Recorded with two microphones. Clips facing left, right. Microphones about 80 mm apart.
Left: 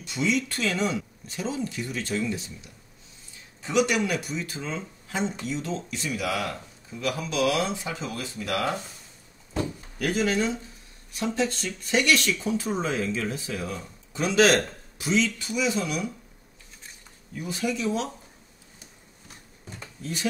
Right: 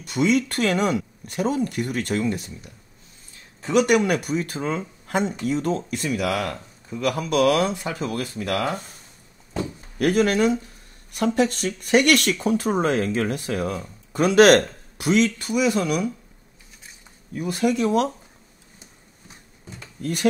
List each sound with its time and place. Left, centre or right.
0.0 s speech: right
9.9 s speech: right
17.3 s speech: right
20.0 s speech: right